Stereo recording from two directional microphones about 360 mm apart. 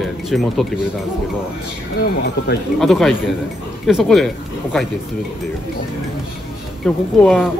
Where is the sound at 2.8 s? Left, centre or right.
Centre.